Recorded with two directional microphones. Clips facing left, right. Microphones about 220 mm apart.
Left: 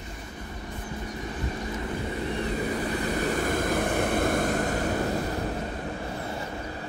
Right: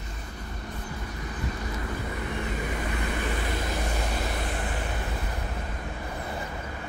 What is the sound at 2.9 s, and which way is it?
Vehicle, 45° left (ahead or behind).